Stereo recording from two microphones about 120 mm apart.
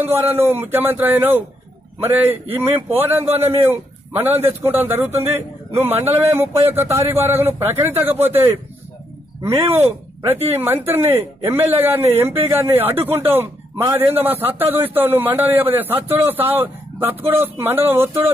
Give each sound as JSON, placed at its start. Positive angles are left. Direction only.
{"t": 0.0, "sound": "a man's voice", "side_deg": -20}
{"t": 10.5, "sound": "a man's voice", "side_deg": -20}